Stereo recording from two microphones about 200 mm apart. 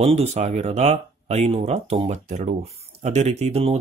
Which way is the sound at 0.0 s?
30° right (ahead or behind).